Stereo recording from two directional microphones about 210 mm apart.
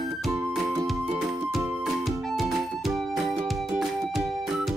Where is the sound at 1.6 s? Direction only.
5° right (ahead or behind).